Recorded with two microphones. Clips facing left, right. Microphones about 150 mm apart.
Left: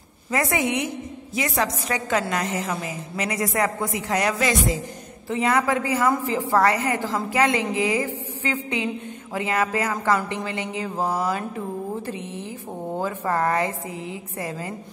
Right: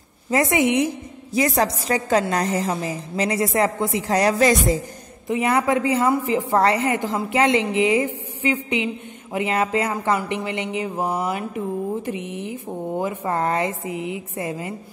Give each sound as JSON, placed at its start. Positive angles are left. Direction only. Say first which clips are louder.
{"t": 0.3, "sound": "a woman's voice", "louder": "right 4 dB", "side_deg": -25}
{"t": 1.3, "sound": "a woman's voice", "louder": "right 5 dB", "side_deg": -35}
{"t": 5.6, "sound": "a woman's voice", "louder": "right 3 dB", "side_deg": -20}